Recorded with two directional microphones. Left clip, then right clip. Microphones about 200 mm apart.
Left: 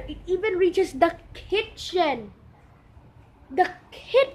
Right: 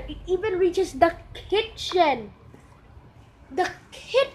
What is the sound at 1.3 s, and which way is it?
Speech, 15° right (ahead or behind).